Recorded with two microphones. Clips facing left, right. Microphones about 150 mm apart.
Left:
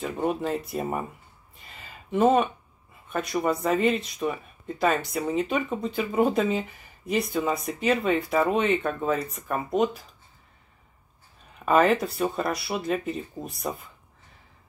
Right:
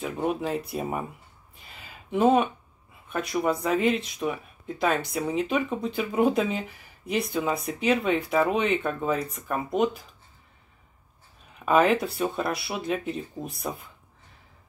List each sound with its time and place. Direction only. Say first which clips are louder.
0.0 s speech: left 1 dB; centre (ahead or behind)
1.6 s a sound: left 1 dB; 5° right (ahead or behind)
3.1 s speech: even; centre (ahead or behind)
11.6 s speech: even; 5° right (ahead or behind)